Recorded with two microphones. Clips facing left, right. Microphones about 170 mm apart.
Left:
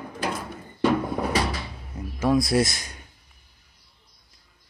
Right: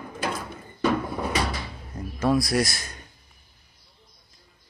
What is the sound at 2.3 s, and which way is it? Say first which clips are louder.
Speech: left 2 dB; 25° left (ahead or behind).